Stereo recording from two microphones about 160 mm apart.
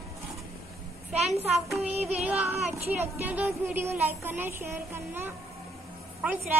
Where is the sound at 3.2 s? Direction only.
10° right (ahead or behind).